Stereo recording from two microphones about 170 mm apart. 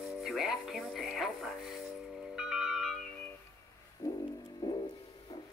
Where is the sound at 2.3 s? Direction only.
5° right (ahead or behind).